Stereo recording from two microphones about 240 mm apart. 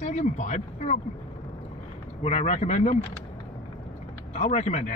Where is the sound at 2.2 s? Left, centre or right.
Left.